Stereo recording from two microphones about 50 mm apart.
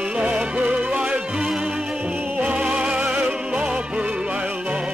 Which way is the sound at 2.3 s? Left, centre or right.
Right.